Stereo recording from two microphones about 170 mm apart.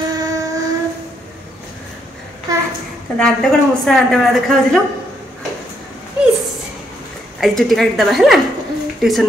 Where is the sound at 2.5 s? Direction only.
20° right (ahead or behind).